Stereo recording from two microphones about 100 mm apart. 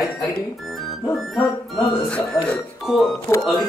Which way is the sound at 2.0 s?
10° left (ahead or behind).